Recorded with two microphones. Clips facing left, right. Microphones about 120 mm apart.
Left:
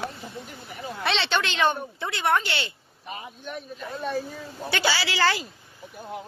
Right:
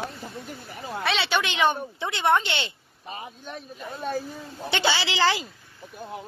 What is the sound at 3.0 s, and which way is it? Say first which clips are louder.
A man's voice: left 1 dB; 35° right (ahead or behind).